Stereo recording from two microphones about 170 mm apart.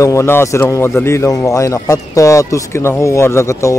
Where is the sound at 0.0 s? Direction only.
15° left (ahead or behind).